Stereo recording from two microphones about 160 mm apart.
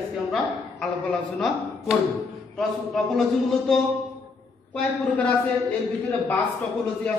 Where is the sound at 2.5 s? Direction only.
Centre (ahead or behind).